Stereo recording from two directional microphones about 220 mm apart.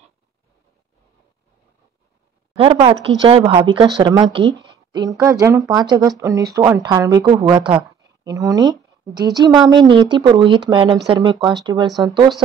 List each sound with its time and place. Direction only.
2.5 s a woman's voice: 25° right (ahead or behind)